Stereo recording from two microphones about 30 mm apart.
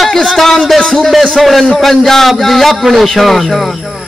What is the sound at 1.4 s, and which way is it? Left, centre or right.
A man's voice, centre.